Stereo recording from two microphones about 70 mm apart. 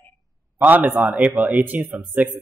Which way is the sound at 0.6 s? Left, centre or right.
Right.